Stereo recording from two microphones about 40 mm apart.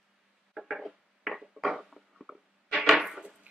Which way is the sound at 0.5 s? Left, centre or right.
Centre.